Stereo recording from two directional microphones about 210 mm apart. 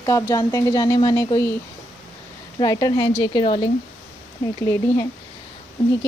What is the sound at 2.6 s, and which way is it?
A woman's voice, 20° left (ahead or behind).